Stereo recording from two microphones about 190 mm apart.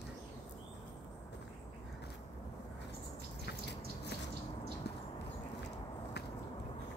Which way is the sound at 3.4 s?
60° left (ahead or behind).